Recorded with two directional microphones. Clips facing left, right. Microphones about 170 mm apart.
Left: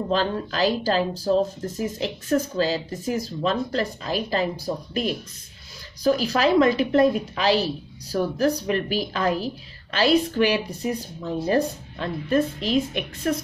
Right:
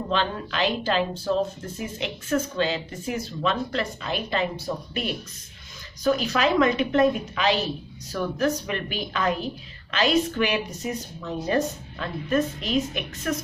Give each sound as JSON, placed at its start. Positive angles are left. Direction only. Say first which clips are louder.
{"t": 0.1, "sound": "speech", "louder": "left 2 dB", "side_deg": 40}